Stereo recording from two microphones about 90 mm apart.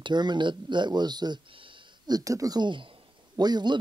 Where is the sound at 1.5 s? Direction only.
75° right (ahead or behind).